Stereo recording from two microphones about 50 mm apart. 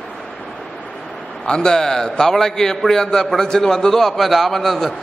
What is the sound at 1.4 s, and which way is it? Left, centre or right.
A man's voice, centre.